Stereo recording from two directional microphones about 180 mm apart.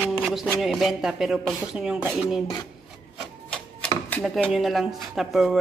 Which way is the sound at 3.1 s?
5° left (ahead or behind).